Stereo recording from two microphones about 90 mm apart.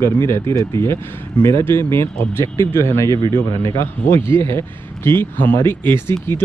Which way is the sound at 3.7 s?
30° left (ahead or behind).